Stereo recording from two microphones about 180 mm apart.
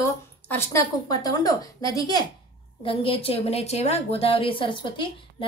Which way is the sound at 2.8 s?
30° left (ahead or behind).